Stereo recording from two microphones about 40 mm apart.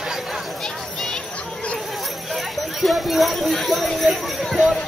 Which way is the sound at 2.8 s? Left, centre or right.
Centre.